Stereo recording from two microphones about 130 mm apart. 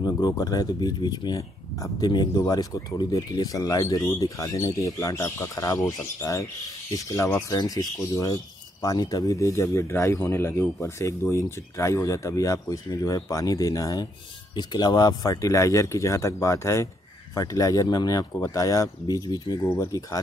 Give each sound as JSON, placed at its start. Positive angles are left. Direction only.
{"t": 0.0, "sound": "speech", "side_deg": 30}